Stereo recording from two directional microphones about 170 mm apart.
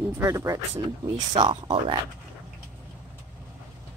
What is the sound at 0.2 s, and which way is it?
A woman's voice, 20° right (ahead or behind).